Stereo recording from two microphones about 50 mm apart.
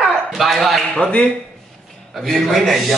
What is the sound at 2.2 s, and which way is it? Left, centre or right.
Speech, centre.